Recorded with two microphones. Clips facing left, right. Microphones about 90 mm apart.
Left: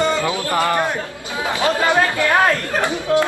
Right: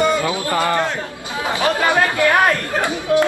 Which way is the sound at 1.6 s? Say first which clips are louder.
Even; 20° right (ahead or behind).